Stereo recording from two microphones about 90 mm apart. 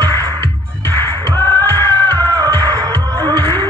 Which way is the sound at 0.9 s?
25° left (ahead or behind).